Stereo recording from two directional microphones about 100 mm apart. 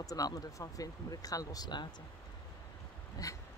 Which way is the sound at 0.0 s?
35° left (ahead or behind).